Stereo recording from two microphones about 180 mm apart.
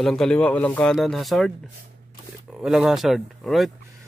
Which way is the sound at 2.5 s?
Centre (ahead or behind).